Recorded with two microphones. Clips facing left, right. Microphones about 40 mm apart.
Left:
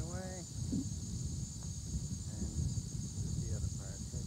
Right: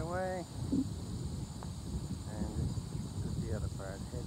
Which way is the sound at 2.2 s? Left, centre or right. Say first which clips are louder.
Right 6 dB; right.